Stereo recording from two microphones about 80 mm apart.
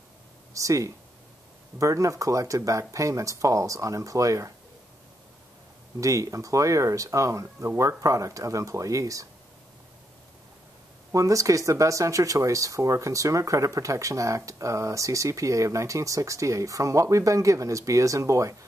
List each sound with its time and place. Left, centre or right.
0.6 s speech: right
5.9 s speech: right
11.1 s speech: right